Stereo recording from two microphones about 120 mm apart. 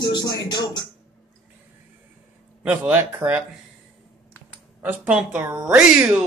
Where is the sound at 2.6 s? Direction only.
15° right (ahead or behind).